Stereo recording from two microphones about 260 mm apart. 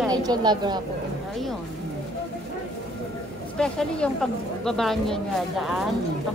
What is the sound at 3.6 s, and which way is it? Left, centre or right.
Speech, centre.